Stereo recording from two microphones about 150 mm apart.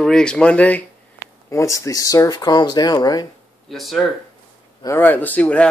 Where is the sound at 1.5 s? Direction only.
20° left (ahead or behind).